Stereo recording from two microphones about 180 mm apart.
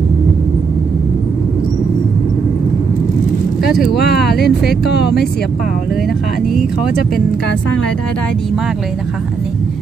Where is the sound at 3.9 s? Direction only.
60° left (ahead or behind).